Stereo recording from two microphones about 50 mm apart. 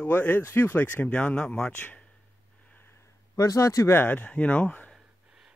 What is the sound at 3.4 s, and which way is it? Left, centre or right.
Speech, left.